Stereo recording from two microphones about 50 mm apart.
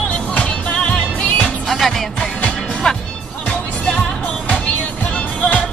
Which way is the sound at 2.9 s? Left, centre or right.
Centre.